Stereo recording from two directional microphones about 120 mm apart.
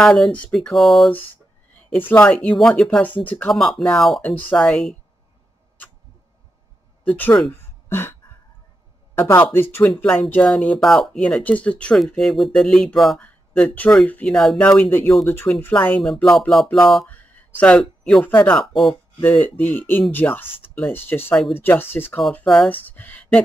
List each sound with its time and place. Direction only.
0.0 s speech: 5° left (ahead or behind)
2.0 s speech: 15° left (ahead or behind)
3.3 s speech: 15° left (ahead or behind)
3.5 s speech: centre (ahead or behind)
7.1 s speech: 15° left (ahead or behind)
7.5 s a sound: 20° left (ahead or behind)
9.1 s speech: 20° left (ahead or behind)
10.3 s speech: 5° left (ahead or behind)
13.7 s speech: 10° left (ahead or behind)
16.0 s speech: centre (ahead or behind)
17.1 s a sound: 15° left (ahead or behind)
18.3 s speech: 15° left (ahead or behind)